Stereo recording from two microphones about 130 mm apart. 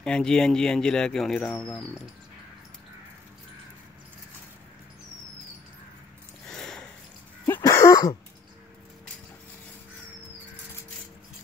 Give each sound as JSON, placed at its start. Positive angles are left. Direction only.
{"t": 0.0, "sound": "speech", "side_deg": 5}
{"t": 6.4, "sound": "sniff", "side_deg": 5}
{"t": 7.4, "sound": "a sound", "side_deg": 25}